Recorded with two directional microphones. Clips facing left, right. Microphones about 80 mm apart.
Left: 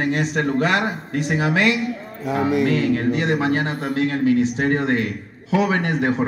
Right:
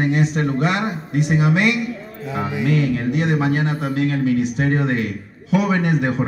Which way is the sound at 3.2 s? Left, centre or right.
Left.